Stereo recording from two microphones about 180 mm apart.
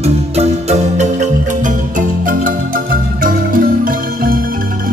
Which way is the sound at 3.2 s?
50° right (ahead or behind).